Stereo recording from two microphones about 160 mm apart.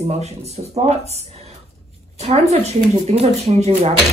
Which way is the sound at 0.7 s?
45° right (ahead or behind).